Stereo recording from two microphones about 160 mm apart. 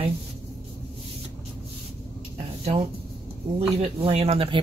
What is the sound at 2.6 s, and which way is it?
Speech, 40° right (ahead or behind).